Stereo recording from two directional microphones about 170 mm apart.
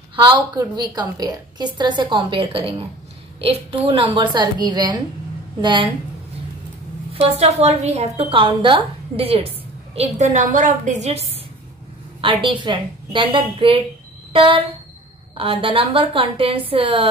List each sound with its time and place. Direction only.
0.1 s a woman's voice: 25° right (ahead or behind)
7.1 s a woman's voice: 35° right (ahead or behind)
9.9 s a woman's voice: 45° right (ahead or behind)
12.2 s a woman's voice: 30° right (ahead or behind)
14.3 s a sound: 30° right (ahead or behind)
15.3 s a woman's voice: 30° right (ahead or behind)